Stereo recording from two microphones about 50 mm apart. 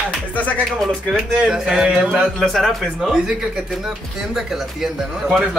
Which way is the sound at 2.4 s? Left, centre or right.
Centre.